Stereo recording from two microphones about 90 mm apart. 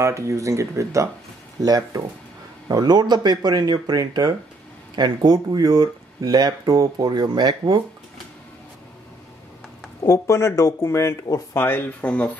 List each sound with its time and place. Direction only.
0.0 s speech: 35° right (ahead or behind)
1.6 s speech: 45° right (ahead or behind)
10.0 s speech: 40° left (ahead or behind)
12.0 s speech: 15° left (ahead or behind)